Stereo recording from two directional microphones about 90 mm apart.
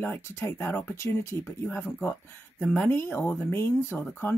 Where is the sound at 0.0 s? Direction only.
25° left (ahead or behind).